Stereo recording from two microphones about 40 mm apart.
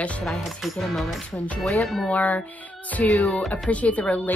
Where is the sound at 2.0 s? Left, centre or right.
Left.